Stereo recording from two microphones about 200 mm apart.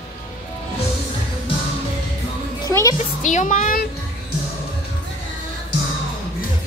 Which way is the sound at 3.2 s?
40° left (ahead or behind).